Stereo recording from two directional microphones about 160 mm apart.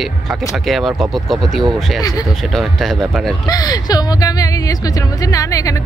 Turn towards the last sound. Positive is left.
turn(degrees=20)  # may be behind; listen again after turning